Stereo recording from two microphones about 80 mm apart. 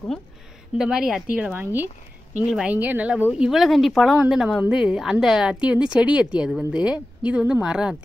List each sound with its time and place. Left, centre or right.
0.7 s speech: centre
1.4 s speech: right
3.4 s speech: centre